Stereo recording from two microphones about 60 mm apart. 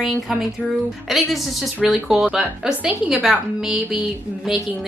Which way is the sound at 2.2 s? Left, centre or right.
Centre.